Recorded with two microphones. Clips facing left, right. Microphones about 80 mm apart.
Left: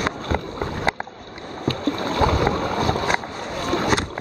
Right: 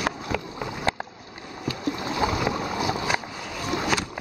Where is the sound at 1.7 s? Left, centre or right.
Centre.